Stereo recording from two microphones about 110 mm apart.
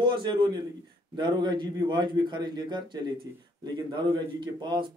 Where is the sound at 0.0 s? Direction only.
45° right (ahead or behind).